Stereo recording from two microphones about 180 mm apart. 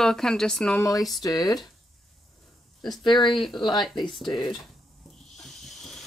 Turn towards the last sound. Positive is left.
turn(degrees=0)  # may be behind; listen again after turning